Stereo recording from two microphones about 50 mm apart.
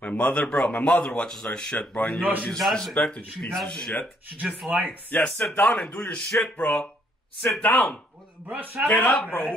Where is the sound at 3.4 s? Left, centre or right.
Centre.